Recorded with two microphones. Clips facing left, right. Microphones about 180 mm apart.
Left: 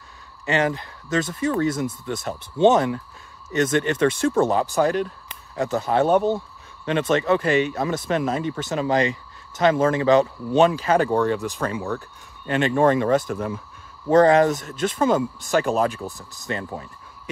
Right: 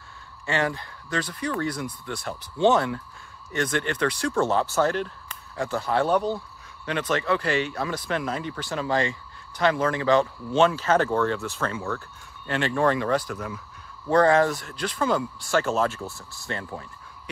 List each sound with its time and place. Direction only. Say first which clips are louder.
0.5 s speech: left 4 dB; 20° left (ahead or behind)